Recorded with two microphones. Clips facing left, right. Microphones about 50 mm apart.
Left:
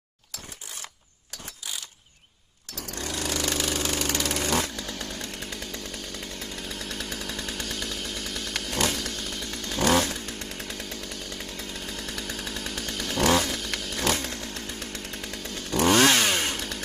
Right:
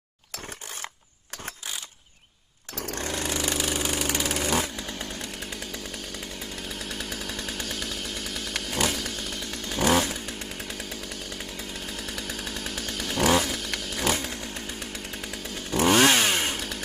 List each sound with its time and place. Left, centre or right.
2.7 s a sound: right
3.3 s vehicle: centre
4.7 s chainsaw: centre
5.1 s chainsaw: centre